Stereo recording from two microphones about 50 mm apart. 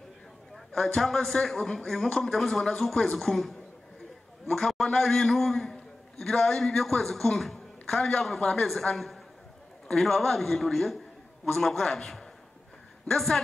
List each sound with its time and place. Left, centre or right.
0.7 s a man's voice: centre
8.0 s a man's voice: centre
8.9 s a man's voice: centre